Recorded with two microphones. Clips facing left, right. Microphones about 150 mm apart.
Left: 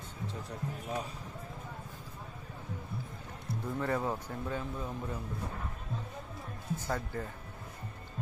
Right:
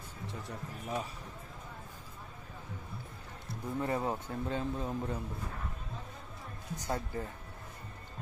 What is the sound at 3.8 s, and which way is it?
Speech, 20° right (ahead or behind).